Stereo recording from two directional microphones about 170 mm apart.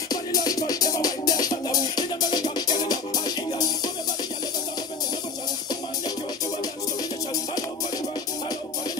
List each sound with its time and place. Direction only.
0.1 s music: 20° left (ahead or behind)